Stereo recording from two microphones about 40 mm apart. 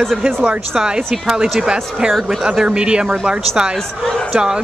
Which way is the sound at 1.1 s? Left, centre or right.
Centre.